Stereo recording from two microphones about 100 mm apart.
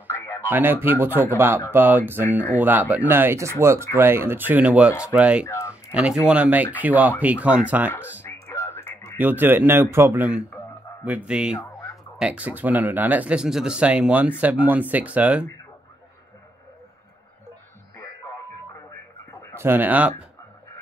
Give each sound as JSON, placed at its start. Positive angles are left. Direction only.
{"t": 0.0, "sound": "radio", "side_deg": 25}
{"t": 0.5, "sound": "a man's voice", "side_deg": -20}
{"t": 8.2, "sound": "a sound", "side_deg": 25}
{"t": 9.2, "sound": "a man's voice", "side_deg": -20}
{"t": 17.9, "sound": "radio", "side_deg": 30}
{"t": 19.5, "sound": "speech", "side_deg": -20}